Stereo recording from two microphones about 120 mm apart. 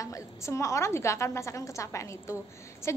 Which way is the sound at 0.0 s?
25° left (ahead or behind).